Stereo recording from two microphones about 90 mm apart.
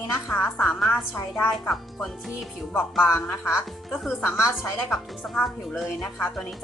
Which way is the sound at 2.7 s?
30° left (ahead or behind).